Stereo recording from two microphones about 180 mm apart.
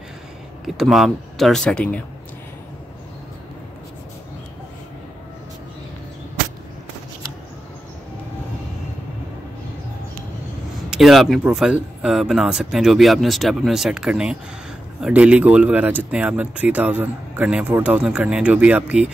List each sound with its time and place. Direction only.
0.7 s speech: centre (ahead or behind)
10.9 s speech: centre (ahead or behind)